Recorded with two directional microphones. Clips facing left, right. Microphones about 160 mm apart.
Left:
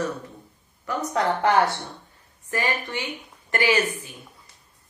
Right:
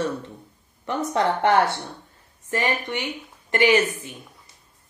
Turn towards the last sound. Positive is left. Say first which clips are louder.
# right 3 dB
turn(degrees=-20)  # may be behind; listen again after turning